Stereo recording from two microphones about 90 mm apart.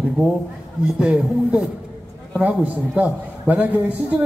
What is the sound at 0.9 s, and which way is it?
A man's voice, 10° right (ahead or behind).